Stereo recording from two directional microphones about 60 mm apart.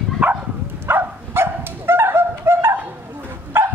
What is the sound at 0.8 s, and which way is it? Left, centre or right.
Dog, right.